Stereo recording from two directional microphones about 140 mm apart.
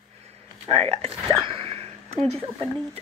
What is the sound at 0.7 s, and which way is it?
Speech, 45° right (ahead or behind).